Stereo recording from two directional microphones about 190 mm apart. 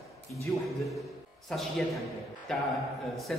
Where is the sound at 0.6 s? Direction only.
Centre (ahead or behind).